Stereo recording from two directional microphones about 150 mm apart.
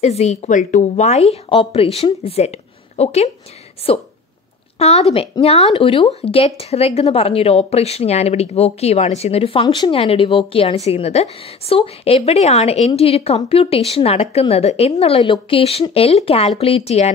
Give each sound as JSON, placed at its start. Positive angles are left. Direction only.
{"t": 0.0, "sound": "a woman's voice", "side_deg": 45}